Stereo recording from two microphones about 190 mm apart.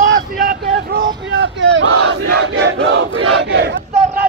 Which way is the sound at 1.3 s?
70° right (ahead or behind).